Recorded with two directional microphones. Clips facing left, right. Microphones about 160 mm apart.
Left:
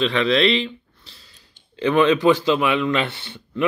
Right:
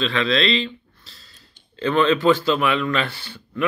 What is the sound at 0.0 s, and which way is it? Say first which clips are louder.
Speech: left 3 dB; 20° left (ahead or behind).